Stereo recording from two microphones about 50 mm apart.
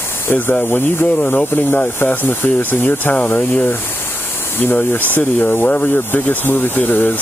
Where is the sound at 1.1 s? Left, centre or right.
Left.